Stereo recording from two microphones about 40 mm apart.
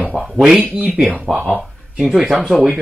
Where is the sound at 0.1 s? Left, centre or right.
Centre.